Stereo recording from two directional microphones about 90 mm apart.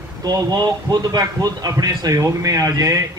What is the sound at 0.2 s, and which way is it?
A man's voice, 50° right (ahead or behind).